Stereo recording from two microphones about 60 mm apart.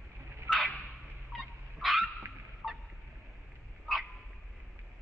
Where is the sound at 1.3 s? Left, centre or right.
Centre.